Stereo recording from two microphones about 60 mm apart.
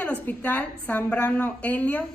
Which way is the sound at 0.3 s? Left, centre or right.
Left.